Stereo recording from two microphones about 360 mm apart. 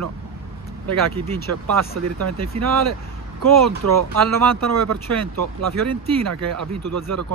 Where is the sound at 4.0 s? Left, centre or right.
Right.